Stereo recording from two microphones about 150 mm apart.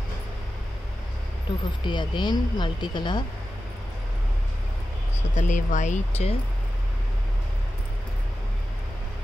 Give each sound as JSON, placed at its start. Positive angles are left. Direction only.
{"t": 1.9, "sound": "speech", "side_deg": 30}
{"t": 5.3, "sound": "speech", "side_deg": 55}